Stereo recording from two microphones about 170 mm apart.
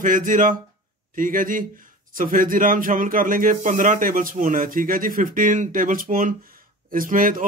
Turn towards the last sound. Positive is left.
turn(degrees=-55)  # may be behind; listen again after turning